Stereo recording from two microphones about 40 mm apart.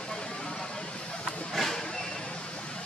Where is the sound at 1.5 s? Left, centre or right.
Centre.